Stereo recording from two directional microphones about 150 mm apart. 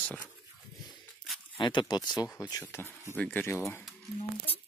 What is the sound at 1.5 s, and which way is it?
Speech, 30° left (ahead or behind).